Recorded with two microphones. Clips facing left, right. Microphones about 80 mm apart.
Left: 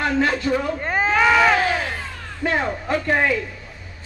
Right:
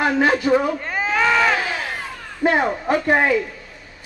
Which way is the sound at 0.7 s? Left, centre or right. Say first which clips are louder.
Left 3 dB; left.